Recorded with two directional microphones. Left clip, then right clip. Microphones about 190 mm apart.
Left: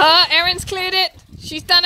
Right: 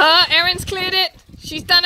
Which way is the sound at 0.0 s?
Centre (ahead or behind).